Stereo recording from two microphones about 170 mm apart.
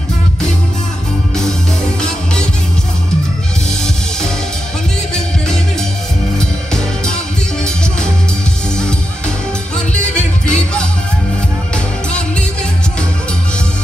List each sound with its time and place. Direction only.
6.3 s music: 5° left (ahead or behind)
9.8 s music: 5° left (ahead or behind)